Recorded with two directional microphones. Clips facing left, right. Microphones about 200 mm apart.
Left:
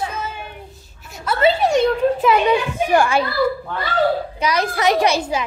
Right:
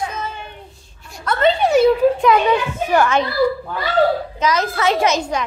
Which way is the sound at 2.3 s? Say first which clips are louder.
Even; 10° left (ahead or behind).